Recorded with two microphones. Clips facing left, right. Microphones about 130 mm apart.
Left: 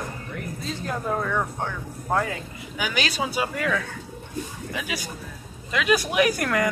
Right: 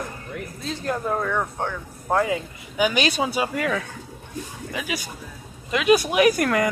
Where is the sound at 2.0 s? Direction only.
10° right (ahead or behind).